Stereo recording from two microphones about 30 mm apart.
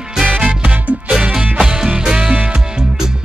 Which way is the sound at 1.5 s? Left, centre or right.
Right.